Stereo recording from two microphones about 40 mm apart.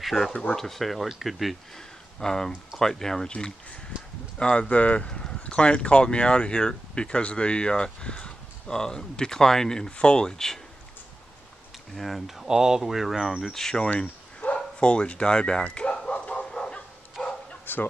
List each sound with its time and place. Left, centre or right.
0.0 s speech: centre
1.8 s speech: centre
3.3 s speech: left
10.2 s speech: centre
11.9 s speech: centre
12.4 s speech: centre
13.5 s speech: centre
14.4 s speech: left
16.1 s bow-wow: left
16.4 s bow-wow: centre
17.7 s a sound: left